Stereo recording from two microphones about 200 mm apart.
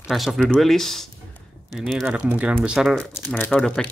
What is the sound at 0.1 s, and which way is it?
Speech, centre (ahead or behind).